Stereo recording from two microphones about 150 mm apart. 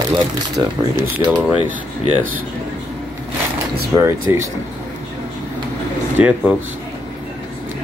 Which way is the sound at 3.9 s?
15° right (ahead or behind).